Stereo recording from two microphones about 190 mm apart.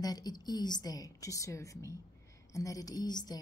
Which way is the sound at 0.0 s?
20° left (ahead or behind).